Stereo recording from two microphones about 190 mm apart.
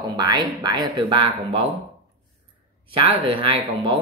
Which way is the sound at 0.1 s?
20° right (ahead or behind).